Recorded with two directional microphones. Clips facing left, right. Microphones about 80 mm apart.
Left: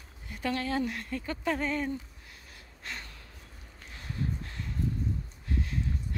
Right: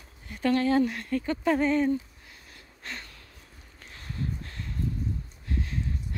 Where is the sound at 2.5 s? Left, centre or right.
Centre.